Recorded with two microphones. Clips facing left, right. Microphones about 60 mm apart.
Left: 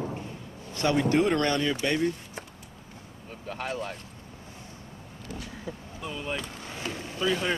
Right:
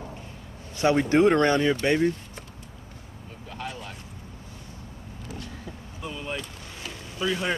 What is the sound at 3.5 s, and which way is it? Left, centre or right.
Speech, left.